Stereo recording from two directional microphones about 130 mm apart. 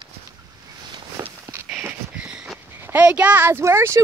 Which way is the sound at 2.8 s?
10° right (ahead or behind).